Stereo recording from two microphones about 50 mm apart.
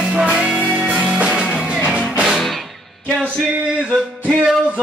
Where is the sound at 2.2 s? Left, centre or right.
Centre.